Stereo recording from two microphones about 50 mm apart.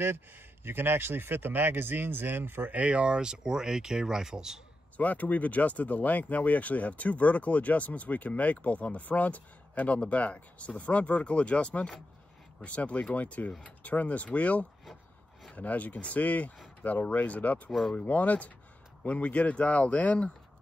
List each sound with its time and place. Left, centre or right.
0.7 s speech: right
2.7 s speech: right; by 4.6 s centre
4.9 s speech: left
17.6 s speech: centre
18.0 s speech: left